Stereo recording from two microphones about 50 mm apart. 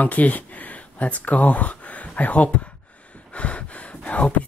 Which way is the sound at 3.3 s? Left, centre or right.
Left.